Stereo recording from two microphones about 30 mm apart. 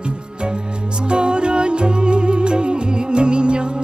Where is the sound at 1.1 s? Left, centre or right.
Right.